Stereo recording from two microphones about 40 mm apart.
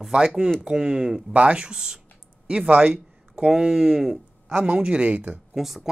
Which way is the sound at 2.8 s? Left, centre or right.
Right.